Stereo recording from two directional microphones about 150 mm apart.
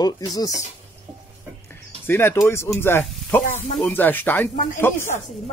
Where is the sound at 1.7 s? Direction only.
15° left (ahead or behind).